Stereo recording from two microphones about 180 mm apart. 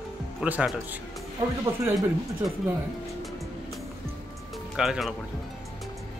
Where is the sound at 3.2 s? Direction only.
Centre (ahead or behind).